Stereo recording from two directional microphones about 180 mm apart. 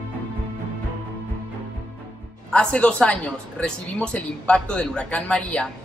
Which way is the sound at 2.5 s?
5° left (ahead or behind).